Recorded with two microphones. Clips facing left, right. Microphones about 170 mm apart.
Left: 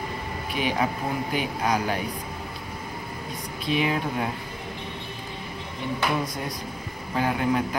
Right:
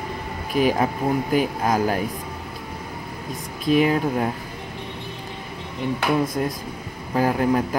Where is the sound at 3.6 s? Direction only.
45° right (ahead or behind).